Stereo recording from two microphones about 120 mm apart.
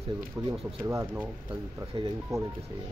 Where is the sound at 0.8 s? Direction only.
20° right (ahead or behind).